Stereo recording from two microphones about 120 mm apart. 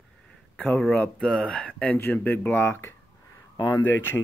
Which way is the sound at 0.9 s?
10° left (ahead or behind).